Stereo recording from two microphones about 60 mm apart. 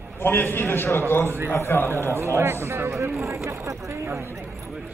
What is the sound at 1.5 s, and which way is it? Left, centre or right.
Speech, left.